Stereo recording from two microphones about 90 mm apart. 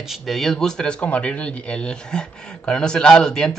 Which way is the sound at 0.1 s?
Centre (ahead or behind).